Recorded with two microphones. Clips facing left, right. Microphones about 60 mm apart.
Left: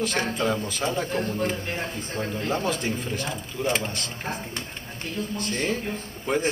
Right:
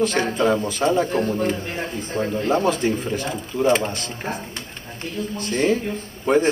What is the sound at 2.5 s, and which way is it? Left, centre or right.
Speech, centre.